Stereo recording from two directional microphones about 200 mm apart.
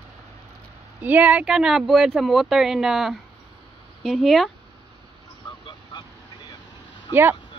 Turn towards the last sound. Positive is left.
turn(degrees=20)  # may be behind; listen again after turning